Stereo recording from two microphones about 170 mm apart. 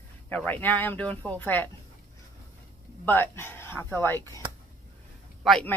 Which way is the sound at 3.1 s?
10° left (ahead or behind).